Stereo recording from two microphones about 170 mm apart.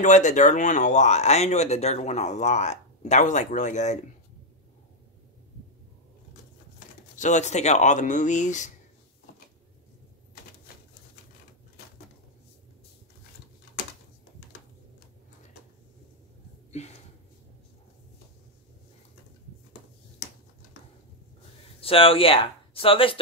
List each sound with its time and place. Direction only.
0.0 s speech: 45° left (ahead or behind)
7.2 s speech: 45° left (ahead or behind)
21.7 s speech: 35° left (ahead or behind)